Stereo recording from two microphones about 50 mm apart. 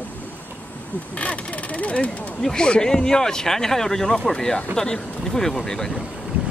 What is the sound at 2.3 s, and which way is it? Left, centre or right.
Speech, centre.